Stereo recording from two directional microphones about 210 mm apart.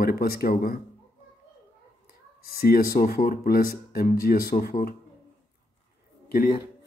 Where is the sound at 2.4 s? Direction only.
45° left (ahead or behind).